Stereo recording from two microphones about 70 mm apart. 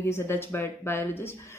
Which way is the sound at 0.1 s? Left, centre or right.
Left.